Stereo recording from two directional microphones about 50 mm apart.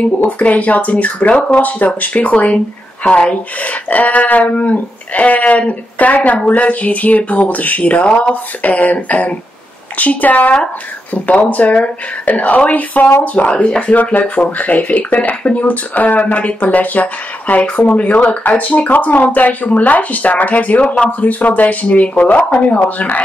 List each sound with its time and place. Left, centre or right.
0.2 s speech: left